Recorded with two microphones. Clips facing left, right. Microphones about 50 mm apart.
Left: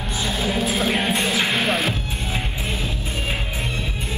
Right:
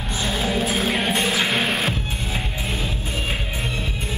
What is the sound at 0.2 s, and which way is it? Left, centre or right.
Music, right.